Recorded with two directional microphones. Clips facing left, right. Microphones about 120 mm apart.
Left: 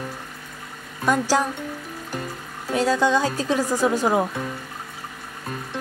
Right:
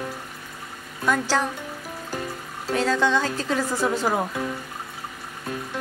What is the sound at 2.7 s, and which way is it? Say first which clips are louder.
Music: left 2 dB; 10° left (ahead or behind).